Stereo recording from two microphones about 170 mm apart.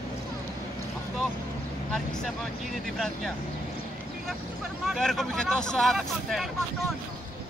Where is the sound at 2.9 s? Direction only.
Centre (ahead or behind).